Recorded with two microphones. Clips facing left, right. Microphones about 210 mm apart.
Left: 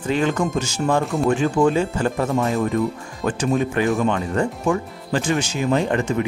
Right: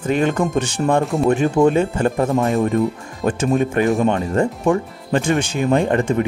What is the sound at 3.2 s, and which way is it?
Speech, 55° right (ahead or behind).